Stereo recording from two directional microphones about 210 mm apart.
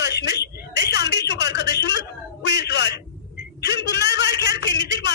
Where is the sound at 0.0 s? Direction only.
55° left (ahead or behind).